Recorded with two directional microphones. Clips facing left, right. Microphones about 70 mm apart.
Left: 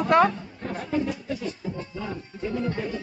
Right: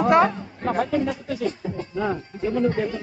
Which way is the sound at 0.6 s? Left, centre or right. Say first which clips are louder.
Right 6 dB; right.